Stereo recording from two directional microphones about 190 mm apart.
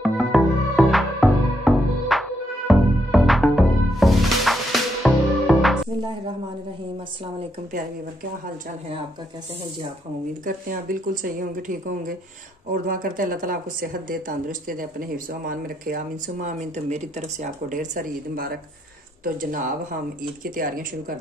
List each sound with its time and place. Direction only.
0.0 s music: centre (ahead or behind)
10.4 s speech: 45° right (ahead or behind)
12.8 s speech: 45° right (ahead or behind)